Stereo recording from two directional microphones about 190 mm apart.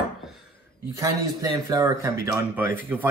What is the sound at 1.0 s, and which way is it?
Speech, 20° right (ahead or behind).